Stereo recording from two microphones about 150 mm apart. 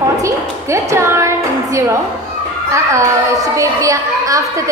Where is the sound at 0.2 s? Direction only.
20° right (ahead or behind).